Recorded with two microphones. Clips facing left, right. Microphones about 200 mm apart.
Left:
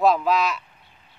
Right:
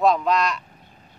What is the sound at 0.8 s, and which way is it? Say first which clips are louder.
Duck: right 6 dB; 45° right (ahead or behind).